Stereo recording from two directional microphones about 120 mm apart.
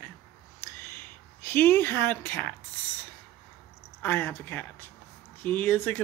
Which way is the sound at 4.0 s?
20° left (ahead or behind).